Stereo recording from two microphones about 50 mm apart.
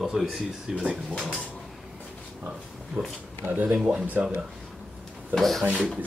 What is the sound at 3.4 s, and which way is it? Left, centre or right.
Speech, right.